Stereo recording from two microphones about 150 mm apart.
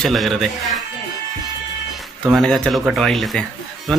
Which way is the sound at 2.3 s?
5° left (ahead or behind).